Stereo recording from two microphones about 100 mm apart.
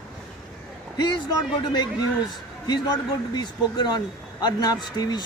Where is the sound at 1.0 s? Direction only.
45° left (ahead or behind).